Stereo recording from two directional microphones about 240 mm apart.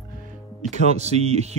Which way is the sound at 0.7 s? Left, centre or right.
Right.